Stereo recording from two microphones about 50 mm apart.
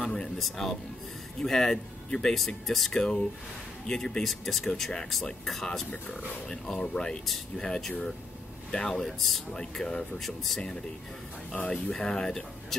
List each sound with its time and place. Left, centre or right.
0.0 s music: centre
0.4 s speech: centre
9.6 s speech: centre
11.7 s speech: centre